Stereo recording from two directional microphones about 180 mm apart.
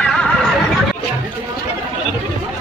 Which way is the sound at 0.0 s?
5° left (ahead or behind).